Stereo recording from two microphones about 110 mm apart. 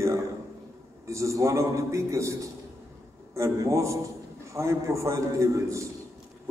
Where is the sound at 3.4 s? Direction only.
30° right (ahead or behind).